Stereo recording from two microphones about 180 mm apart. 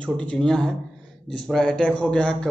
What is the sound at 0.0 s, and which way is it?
A man's voice, 5° left (ahead or behind).